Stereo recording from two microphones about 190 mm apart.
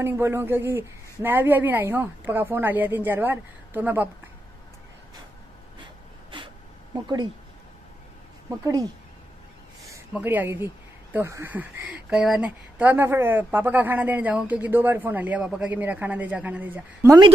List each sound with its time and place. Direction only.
0.0 s speech: 15° right (ahead or behind)
8.6 s speech: 20° right (ahead or behind)